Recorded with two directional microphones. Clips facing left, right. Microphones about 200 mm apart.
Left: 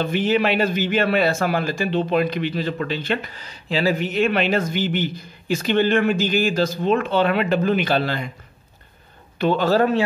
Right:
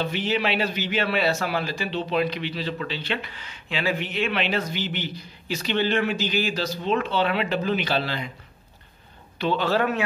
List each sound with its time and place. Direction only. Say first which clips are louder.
0.0 s a man's voice: left 6 dB; 50° left (ahead or behind)
9.4 s a man's voice: left 5 dB; 45° left (ahead or behind)